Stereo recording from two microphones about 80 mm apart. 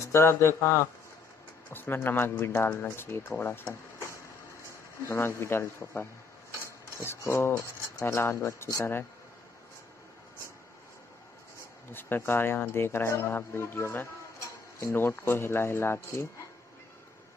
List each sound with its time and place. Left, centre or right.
0.0 s speech: left
5.0 s speech: left
11.9 s speech: left